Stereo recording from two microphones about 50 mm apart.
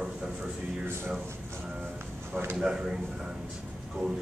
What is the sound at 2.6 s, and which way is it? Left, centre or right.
Speech, centre.